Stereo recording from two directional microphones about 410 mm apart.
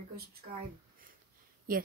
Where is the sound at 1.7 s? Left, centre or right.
Right.